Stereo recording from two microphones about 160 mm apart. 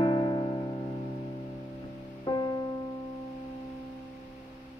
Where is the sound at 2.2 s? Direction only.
25° left (ahead or behind).